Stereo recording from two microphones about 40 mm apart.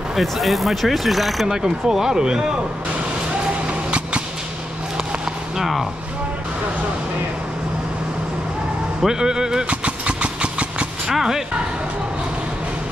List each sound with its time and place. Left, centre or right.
0.1 s speech: centre
1.5 s speech: centre
5.6 s speech: centre
9.0 s speech: centre
9.7 s vehicle: right
11.1 s speech: centre